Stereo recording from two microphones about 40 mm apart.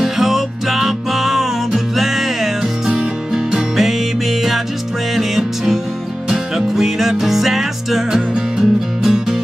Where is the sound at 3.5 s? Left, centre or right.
Centre.